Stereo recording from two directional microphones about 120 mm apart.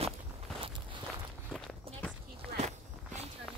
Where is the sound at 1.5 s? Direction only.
10° left (ahead or behind).